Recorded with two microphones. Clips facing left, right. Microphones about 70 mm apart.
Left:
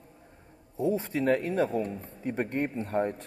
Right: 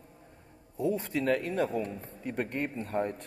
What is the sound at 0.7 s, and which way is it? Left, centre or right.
A man's voice, left.